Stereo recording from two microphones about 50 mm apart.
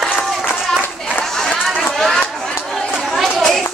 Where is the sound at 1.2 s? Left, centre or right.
Centre.